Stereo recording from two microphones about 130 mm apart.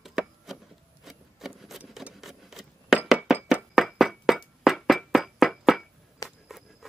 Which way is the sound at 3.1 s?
5° right (ahead or behind).